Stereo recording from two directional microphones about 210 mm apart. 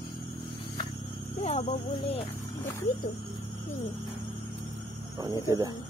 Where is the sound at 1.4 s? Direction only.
35° left (ahead or behind).